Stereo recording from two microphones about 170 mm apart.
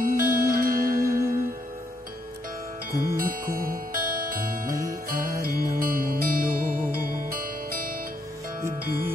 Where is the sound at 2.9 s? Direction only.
60° right (ahead or behind).